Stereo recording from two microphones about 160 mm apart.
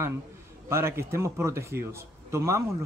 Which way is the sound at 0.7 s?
15° right (ahead or behind).